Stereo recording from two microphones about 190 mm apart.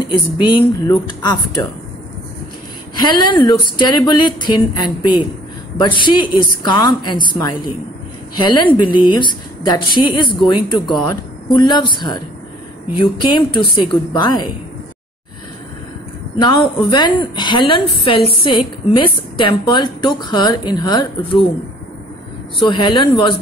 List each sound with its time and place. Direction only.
0.1 s a woman's voice: 25° left (ahead or behind)
3.3 s a woman's voice: 25° left (ahead or behind)
16.3 s a woman's voice: 25° left (ahead or behind)
22.6 s a woman's voice: 25° left (ahead or behind)